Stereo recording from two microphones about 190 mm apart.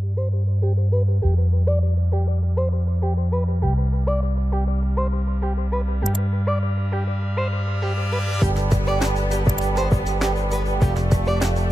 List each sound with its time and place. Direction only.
3.3 s music: centre (ahead or behind)
8.1 s music: centre (ahead or behind)